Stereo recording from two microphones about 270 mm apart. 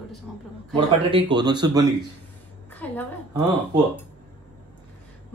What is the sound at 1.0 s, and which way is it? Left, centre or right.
Speech, centre.